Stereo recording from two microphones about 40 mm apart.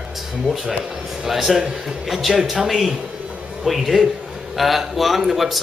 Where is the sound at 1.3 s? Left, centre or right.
Centre.